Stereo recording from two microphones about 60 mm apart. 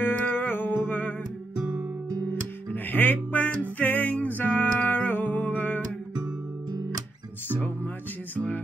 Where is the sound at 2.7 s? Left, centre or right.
Left.